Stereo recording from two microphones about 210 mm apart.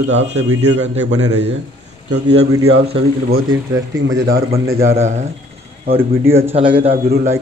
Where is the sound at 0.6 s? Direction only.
60° right (ahead or behind).